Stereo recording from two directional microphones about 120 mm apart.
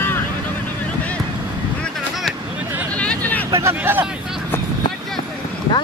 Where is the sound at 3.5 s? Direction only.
20° right (ahead or behind).